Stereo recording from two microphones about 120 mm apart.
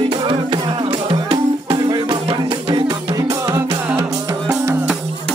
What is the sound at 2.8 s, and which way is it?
Music, 35° right (ahead or behind).